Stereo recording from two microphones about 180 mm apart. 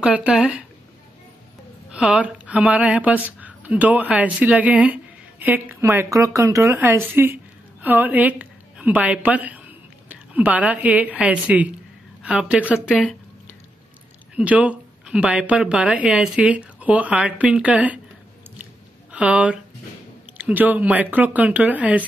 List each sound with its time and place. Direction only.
0.0 s speech: 5° right (ahead or behind)
1.9 s a woman's voice: 5° right (ahead or behind)
14.3 s speech: 5° right (ahead or behind)
19.1 s speech: 5° right (ahead or behind)